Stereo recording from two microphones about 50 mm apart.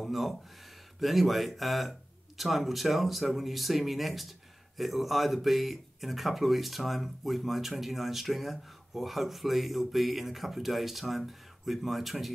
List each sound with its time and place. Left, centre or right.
0.0 s speech: centre